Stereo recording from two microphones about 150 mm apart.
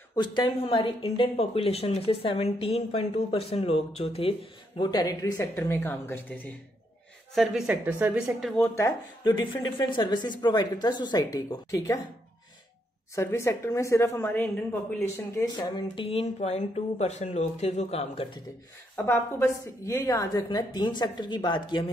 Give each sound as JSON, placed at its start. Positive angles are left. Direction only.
{"t": 0.1, "sound": "speech", "side_deg": 30}
{"t": 4.7, "sound": "a woman's voice", "side_deg": 25}
{"t": 7.3, "sound": "speech", "side_deg": -5}
{"t": 8.7, "sound": "speech", "side_deg": 20}
{"t": 13.1, "sound": "a woman's voice", "side_deg": 15}
{"t": 15.5, "sound": "speech", "side_deg": 30}
{"t": 19.0, "sound": "speech", "side_deg": 15}
{"t": 20.4, "sound": "speech", "side_deg": 30}